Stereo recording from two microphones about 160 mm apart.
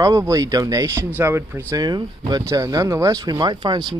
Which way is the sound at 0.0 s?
20° right (ahead or behind).